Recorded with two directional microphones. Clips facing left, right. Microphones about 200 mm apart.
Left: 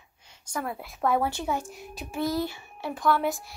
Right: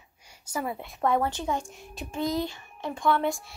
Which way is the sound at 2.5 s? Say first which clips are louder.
Even; 10° left (ahead or behind).